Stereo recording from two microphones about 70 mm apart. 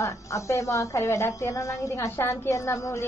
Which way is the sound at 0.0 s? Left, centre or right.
Left.